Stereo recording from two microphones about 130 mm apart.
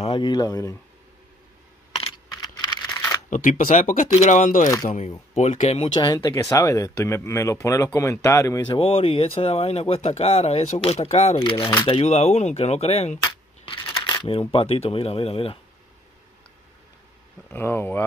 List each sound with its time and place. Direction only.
0.0 s speech: 40° left (ahead or behind)
2.3 s computer keyboard: 30° left (ahead or behind)
3.3 s speech: 75° left (ahead or behind)
4.1 s speech: 60° left (ahead or behind); by 4.6 s 80° left
4.8 s speech: 65° left (ahead or behind)
5.9 s speech: 30° left (ahead or behind)
8.6 s speech: 45° left (ahead or behind)
11.4 s speech: 40° left (ahead or behind)
12.0 s speech: 55° left (ahead or behind)
13.7 s speech: 35° left (ahead or behind)
17.5 s speech: 15° left (ahead or behind)